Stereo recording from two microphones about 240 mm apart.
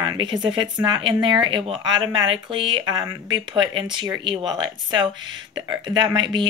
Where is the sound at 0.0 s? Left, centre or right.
Centre.